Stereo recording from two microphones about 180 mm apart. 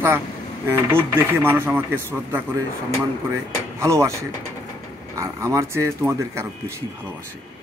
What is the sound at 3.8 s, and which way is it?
Speech, 15° right (ahead or behind).